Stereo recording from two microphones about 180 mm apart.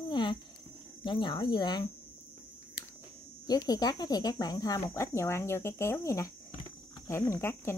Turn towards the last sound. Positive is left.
turn(degrees=15)  # may be behind; listen again after turning